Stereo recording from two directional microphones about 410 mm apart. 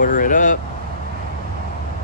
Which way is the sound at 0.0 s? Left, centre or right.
Centre.